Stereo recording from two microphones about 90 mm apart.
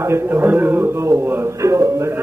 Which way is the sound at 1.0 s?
30° right (ahead or behind).